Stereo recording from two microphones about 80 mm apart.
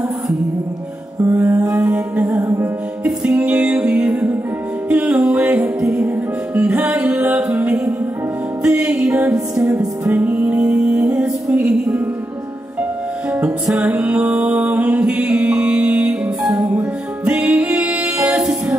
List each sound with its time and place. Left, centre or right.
1.2 s music: right
2.4 s music: right
3.1 s music: centre
6.0 s music: centre
10.1 s music: right
13.7 s mantra: centre
16.4 s music: centre